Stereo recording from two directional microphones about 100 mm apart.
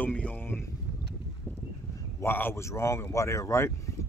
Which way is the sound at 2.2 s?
20° left (ahead or behind).